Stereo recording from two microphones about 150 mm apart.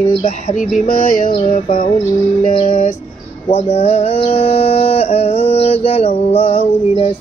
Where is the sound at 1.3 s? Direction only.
40° left (ahead or behind).